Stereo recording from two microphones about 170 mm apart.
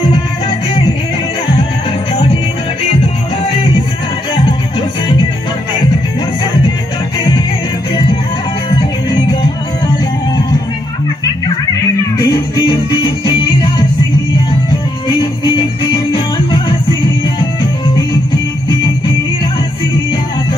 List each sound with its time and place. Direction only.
4.5 s music: 30° left (ahead or behind)
12.2 s music: 25° left (ahead or behind)
15.0 s music: 25° left (ahead or behind)